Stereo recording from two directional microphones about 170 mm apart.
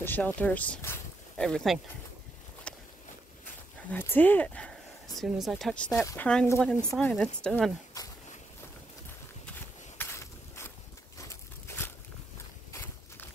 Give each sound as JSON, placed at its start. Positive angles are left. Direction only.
{"t": 0.0, "sound": "speech", "side_deg": 10}
{"t": 2.7, "sound": "a sound", "side_deg": 5}
{"t": 3.9, "sound": "speech", "side_deg": 10}
{"t": 5.9, "sound": "speech", "side_deg": 15}
{"t": 9.9, "sound": "a sound", "side_deg": 15}
{"t": 12.7, "sound": "walk", "side_deg": 10}